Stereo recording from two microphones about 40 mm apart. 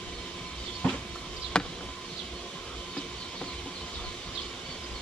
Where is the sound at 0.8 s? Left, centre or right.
Left.